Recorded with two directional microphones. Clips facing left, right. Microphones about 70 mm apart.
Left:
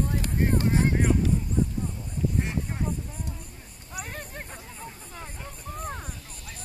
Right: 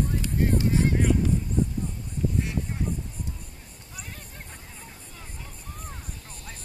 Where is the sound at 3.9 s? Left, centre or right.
Left.